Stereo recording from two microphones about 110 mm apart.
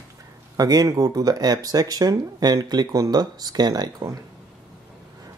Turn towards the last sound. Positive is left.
turn(degrees=-35)  # may be behind; listen again after turning